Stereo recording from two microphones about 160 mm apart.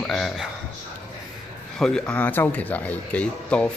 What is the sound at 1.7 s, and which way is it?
Speech, 5° left (ahead or behind).